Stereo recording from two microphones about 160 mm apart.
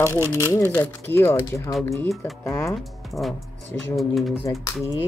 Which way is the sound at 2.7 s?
Centre (ahead or behind).